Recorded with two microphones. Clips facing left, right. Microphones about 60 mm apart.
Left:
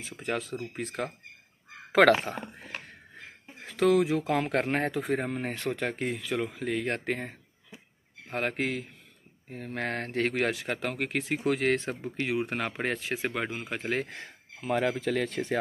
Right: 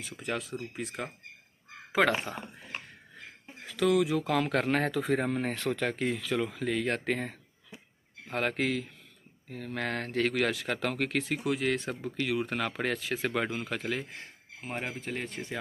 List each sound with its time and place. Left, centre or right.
0.0 s speech: left
1.9 s speech: left
3.6 s speech: left
5.0 s speech: centre
9.5 s speech: left
11.4 s speech: left
11.8 s speech: left
13.3 s speech: centre
14.0 s speech: left
14.7 s speech: left